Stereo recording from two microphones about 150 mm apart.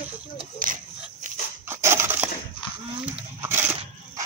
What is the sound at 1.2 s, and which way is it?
Dog, 55° right (ahead or behind).